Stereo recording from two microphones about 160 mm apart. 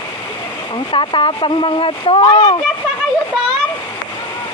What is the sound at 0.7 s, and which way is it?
Speech, 30° left (ahead or behind).